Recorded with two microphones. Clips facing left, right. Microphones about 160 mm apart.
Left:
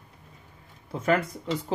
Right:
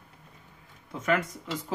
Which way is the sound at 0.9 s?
35° left (ahead or behind).